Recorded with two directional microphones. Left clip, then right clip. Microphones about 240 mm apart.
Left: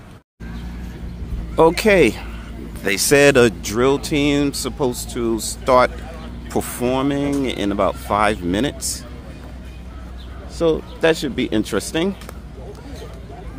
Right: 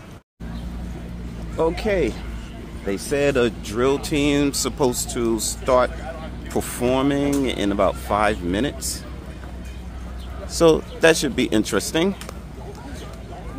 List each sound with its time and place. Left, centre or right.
1.6 s speech: left; by 9.0 s centre
10.5 s speech: centre
11.0 s speech: centre